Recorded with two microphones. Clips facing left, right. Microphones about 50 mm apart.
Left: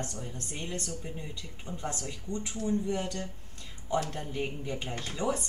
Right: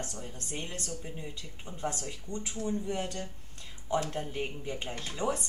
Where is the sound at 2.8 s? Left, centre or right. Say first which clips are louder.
Left 2 dB; centre.